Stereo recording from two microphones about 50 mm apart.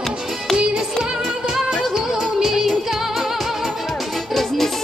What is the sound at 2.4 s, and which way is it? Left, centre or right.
Music, centre.